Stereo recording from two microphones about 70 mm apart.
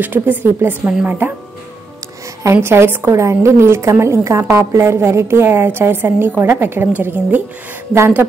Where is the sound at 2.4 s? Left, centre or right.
Right.